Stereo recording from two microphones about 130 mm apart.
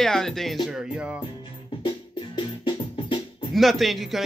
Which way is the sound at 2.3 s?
40° left (ahead or behind).